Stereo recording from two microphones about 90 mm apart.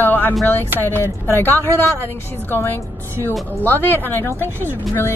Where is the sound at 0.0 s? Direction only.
20° left (ahead or behind).